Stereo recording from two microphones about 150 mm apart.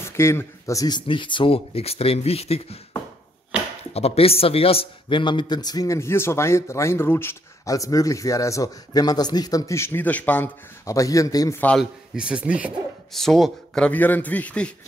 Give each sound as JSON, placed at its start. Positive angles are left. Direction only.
{"t": 0.0, "sound": "speech", "side_deg": 15}
{"t": 3.9, "sound": "a man's voice", "side_deg": 45}
{"t": 11.8, "sound": "a man's voice", "side_deg": -5}